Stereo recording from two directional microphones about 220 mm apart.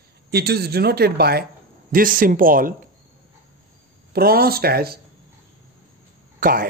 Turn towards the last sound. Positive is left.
turn(degrees=-40)  # may be behind; listen again after turning